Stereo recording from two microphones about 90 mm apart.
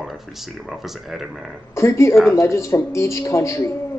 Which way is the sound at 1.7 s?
35° left (ahead or behind).